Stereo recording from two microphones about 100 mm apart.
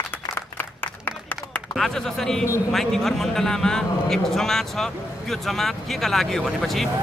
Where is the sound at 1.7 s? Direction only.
5° left (ahead or behind).